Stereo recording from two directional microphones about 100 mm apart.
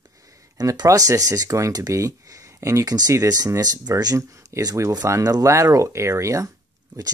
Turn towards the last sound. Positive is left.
turn(degrees=-30)  # may be behind; listen again after turning